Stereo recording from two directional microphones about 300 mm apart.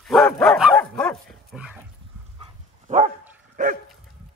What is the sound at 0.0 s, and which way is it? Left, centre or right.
Dog, centre.